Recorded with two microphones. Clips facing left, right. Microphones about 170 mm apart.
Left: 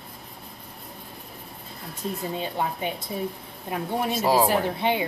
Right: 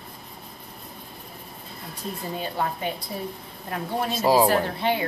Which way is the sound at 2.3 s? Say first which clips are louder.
Even; 20° left (ahead or behind).